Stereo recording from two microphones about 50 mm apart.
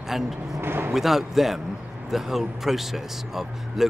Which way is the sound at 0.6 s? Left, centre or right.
Right.